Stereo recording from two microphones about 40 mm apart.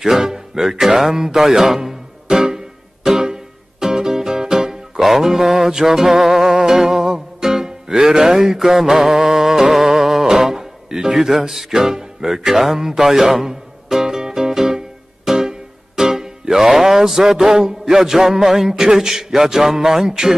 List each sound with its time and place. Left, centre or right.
0.0 s music: centre